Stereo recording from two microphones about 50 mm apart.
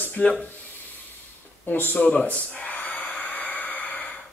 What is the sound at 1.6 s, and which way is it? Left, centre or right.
Speech, left.